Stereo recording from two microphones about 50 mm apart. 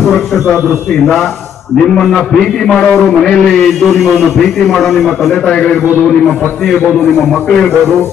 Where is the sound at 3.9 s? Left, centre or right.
Centre.